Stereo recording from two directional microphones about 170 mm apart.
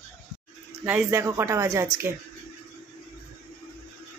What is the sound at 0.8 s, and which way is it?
Speech, 10° right (ahead or behind).